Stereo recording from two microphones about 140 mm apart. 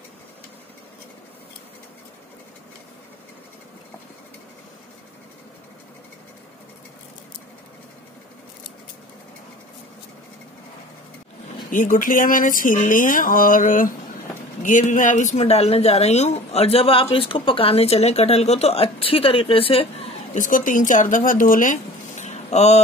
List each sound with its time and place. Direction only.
11.7 s speech: 70° left (ahead or behind); by 20.2 s 45° left (ahead or behind)
20.3 s speech: 70° left (ahead or behind); by 22.8 s 50° left (ahead or behind)